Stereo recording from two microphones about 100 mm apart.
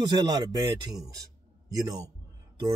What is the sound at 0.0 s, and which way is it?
A man's voice, 45° right (ahead or behind).